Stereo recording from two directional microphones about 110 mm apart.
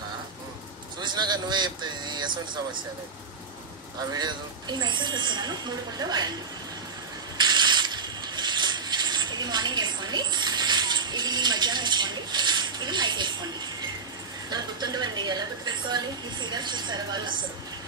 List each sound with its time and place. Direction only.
1.0 s speech: 40° right (ahead or behind)
4.1 s a woman's voice: 40° right (ahead or behind)
7.3 s mechanisms: 45° right (ahead or behind)
14.5 s a woman's voice: 40° right (ahead or behind)